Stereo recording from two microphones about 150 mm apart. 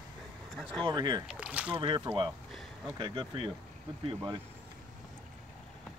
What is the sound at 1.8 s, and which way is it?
Speech, 30° right (ahead or behind).